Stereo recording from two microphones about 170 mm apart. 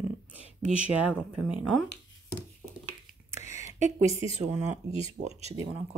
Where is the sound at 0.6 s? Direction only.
5° right (ahead or behind).